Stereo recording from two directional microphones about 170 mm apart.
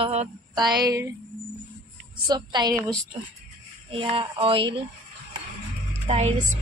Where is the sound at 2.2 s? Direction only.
25° right (ahead or behind).